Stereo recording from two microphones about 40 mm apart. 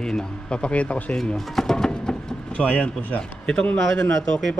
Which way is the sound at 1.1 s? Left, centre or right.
Centre.